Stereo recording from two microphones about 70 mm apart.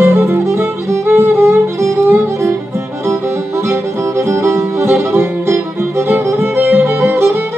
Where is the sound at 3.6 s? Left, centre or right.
Right.